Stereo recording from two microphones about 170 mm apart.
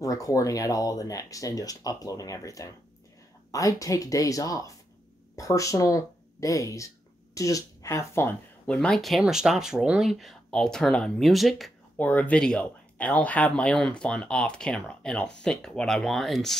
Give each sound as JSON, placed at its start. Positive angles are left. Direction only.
{"t": 0.0, "sound": "speech", "side_deg": 20}